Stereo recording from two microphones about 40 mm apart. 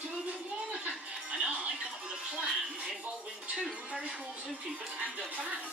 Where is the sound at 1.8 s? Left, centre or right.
Right.